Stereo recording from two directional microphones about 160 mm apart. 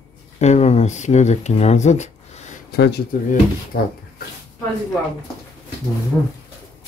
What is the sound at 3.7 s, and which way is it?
Speech, 70° left (ahead or behind).